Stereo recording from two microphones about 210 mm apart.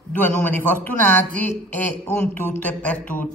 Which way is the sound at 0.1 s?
10° left (ahead or behind).